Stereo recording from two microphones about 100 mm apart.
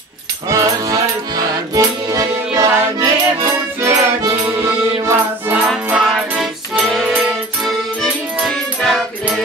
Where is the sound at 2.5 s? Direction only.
30° right (ahead or behind).